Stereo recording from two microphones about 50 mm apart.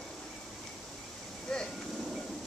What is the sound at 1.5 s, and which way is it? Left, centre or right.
Vehicle, centre.